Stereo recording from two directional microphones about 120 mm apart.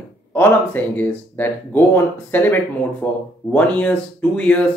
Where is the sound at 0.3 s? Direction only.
15° left (ahead or behind).